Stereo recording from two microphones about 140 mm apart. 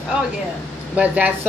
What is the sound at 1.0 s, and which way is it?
Speech, 10° right (ahead or behind).